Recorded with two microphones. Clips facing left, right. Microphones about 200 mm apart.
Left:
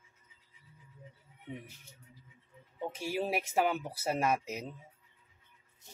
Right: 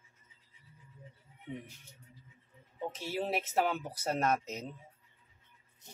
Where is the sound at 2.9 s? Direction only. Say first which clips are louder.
Left 1 dB; 10° left (ahead or behind).